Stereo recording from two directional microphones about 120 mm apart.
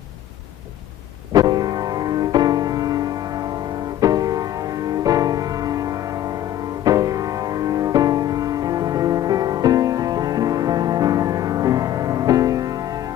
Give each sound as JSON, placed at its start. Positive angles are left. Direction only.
{"t": 1.3, "sound": "music", "side_deg": -35}